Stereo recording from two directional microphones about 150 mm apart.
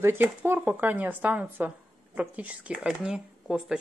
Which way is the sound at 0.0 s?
15° right (ahead or behind).